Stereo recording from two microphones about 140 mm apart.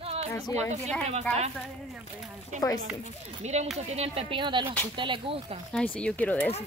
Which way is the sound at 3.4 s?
50° right (ahead or behind).